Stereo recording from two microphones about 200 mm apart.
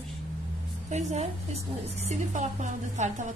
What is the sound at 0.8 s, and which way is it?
A woman's voice, 35° right (ahead or behind).